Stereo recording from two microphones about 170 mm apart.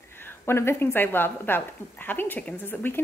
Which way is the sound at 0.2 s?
15° left (ahead or behind).